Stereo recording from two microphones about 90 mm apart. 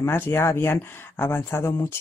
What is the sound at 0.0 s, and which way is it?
Speech, 25° left (ahead or behind).